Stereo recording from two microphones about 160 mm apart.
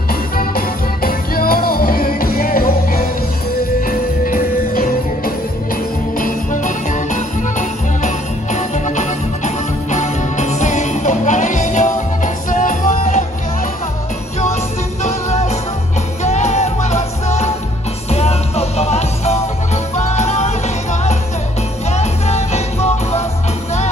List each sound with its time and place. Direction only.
0.1 s music: 65° left (ahead or behind); by 13.2 s 50° left (ahead or behind)
15.0 s music: 45° left (ahead or behind)